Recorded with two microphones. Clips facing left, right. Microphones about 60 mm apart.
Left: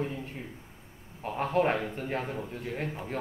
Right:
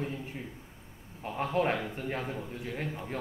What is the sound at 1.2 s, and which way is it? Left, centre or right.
Speech, left.